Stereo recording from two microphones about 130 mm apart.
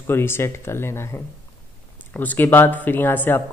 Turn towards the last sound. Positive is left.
turn(degrees=15)  # may be behind; listen again after turning